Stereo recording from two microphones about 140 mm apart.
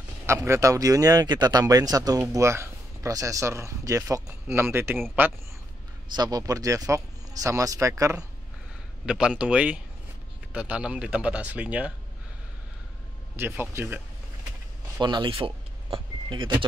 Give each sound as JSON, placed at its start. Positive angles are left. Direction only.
{"t": 0.3, "sound": "speech", "side_deg": -20}
{"t": 6.1, "sound": "speech", "side_deg": -30}
{"t": 9.0, "sound": "speech", "side_deg": -5}
{"t": 13.4, "sound": "speech", "side_deg": -15}
{"t": 15.0, "sound": "speech", "side_deg": -35}
{"t": 15.4, "sound": "vehicle", "side_deg": -40}